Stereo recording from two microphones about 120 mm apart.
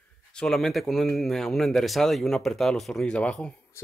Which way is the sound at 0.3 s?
5° left (ahead or behind).